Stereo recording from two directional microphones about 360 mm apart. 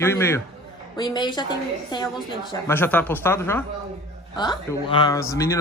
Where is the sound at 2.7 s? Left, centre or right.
Centre.